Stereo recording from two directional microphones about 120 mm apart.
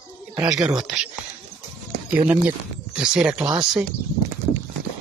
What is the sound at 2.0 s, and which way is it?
Speech, 15° right (ahead or behind).